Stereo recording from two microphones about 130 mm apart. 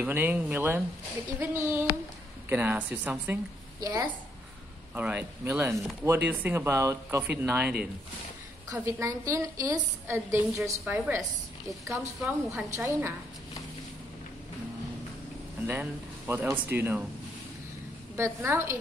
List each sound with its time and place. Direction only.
0.0 s speech: 15° right (ahead or behind)
3.8 s speech: 30° right (ahead or behind)
4.9 s speech: 15° right (ahead or behind)
8.7 s speech: 25° right (ahead or behind)
12.3 s speech: 20° right (ahead or behind)
15.6 s speech: 15° right (ahead or behind)
18.1 s speech: 20° right (ahead or behind)